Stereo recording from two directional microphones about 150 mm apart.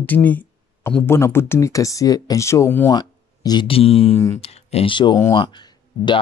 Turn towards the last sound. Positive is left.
turn(degrees=30)  # may be behind; listen again after turning